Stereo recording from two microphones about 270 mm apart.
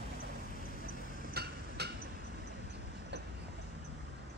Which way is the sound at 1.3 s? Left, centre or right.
Right.